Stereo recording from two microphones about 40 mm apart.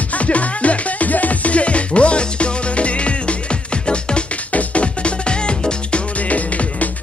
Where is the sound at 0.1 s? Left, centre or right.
Left.